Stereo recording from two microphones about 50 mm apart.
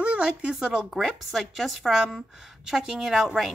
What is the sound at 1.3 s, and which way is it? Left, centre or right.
A woman's voice, centre.